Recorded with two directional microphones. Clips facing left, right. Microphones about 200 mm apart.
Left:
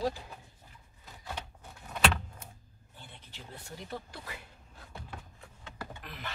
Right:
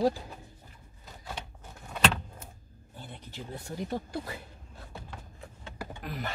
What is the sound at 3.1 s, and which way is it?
Speech, 45° right (ahead or behind).